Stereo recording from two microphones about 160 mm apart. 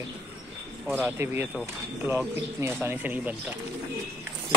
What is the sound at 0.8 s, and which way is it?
Speech, 10° right (ahead or behind).